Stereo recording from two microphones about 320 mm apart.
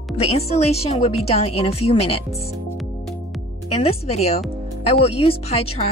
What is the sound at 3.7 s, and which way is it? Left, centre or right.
Speech, centre.